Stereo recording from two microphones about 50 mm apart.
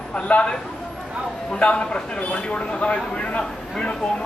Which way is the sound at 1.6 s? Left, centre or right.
Left.